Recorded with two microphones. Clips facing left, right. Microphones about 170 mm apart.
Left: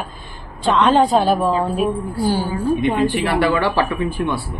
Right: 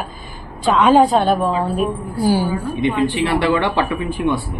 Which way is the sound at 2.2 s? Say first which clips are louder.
Right 2 dB; 10° right (ahead or behind).